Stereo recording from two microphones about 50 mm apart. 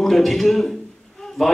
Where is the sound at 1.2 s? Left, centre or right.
Centre.